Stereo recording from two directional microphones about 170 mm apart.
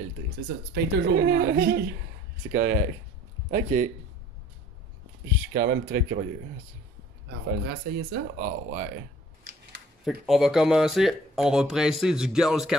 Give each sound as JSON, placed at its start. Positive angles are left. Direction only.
{"t": 0.7, "sound": "speech", "side_deg": -75}
{"t": 2.5, "sound": "speech", "side_deg": -55}
{"t": 5.5, "sound": "speech", "side_deg": -65}
{"t": 7.6, "sound": "speech", "side_deg": -70}
{"t": 10.0, "sound": "speech", "side_deg": 0}